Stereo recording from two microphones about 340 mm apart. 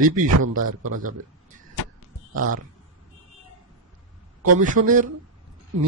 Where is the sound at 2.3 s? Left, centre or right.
Right.